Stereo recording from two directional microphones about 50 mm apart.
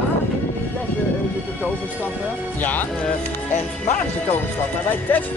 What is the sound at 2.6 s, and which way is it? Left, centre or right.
Speech, left.